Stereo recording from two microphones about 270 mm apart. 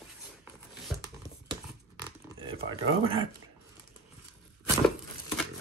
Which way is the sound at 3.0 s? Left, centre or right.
Centre.